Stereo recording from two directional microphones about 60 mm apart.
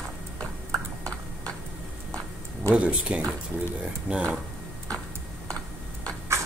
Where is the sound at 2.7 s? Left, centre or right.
Centre.